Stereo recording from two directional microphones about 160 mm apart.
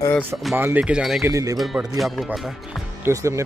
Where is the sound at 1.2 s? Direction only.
20° right (ahead or behind).